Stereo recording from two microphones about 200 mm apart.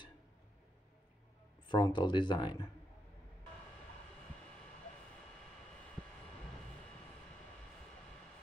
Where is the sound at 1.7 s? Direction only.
20° left (ahead or behind).